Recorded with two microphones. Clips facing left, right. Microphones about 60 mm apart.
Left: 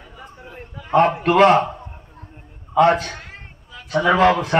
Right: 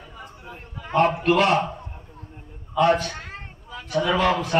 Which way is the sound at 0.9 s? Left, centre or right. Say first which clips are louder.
Left 4 dB; left.